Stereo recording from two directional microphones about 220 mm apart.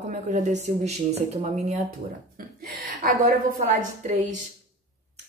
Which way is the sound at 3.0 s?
45° right (ahead or behind).